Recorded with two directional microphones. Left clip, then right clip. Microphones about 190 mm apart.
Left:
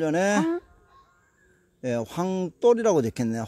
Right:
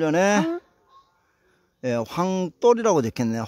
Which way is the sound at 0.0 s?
25° right (ahead or behind).